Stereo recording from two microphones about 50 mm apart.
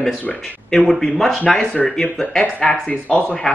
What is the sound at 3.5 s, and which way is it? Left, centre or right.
Speech, centre.